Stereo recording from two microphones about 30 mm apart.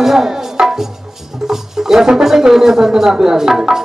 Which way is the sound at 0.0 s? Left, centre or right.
Centre.